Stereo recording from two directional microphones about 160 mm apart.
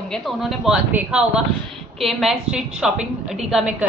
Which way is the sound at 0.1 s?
Centre (ahead or behind).